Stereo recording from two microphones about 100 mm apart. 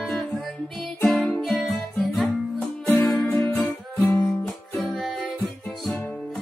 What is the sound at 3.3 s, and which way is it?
Music, 20° left (ahead or behind).